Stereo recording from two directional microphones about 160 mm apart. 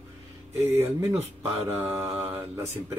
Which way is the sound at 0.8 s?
20° right (ahead or behind).